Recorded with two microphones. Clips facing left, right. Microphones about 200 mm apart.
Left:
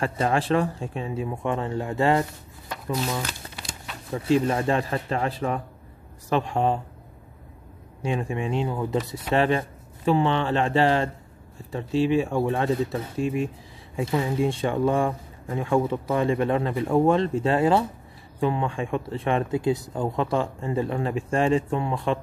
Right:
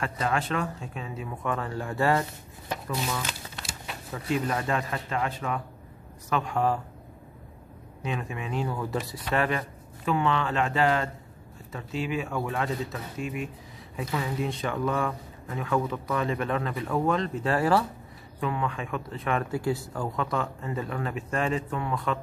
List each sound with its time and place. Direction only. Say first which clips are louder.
0.0 s speech: left 5 dB; 30° left (ahead or behind)
4.1 s speech: left 7 dB; 30° left (ahead or behind)
8.0 s speech: left 6 dB; 30° left (ahead or behind)